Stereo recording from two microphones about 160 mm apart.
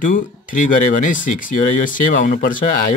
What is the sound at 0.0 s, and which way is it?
Speech, 55° left (ahead or behind).